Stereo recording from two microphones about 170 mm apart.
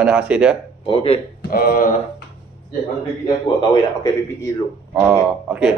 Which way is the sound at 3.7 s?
20° left (ahead or behind).